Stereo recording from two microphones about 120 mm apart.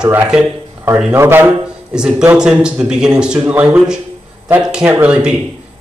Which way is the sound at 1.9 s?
5° right (ahead or behind).